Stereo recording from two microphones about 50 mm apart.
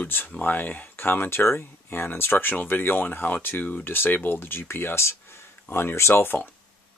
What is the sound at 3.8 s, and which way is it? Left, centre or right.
Speech, left.